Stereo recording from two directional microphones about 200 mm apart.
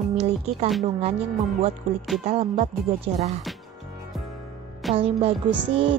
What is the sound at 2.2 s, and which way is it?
Speech, 35° right (ahead or behind).